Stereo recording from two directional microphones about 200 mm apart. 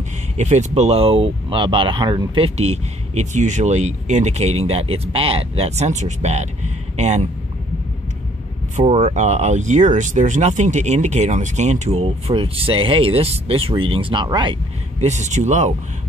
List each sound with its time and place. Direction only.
0.4 s speech: 35° right (ahead or behind)
8.7 s speech: 35° right (ahead or behind)